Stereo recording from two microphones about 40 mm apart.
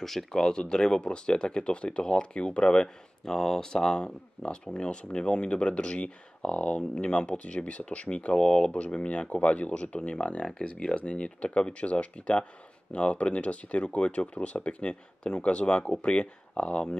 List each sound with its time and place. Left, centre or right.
0.0 s speech: centre; by 2.9 s left
3.3 s speech: centre